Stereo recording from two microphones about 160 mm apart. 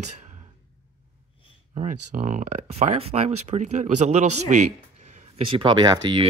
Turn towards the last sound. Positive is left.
turn(degrees=-30)  # may be behind; listen again after turning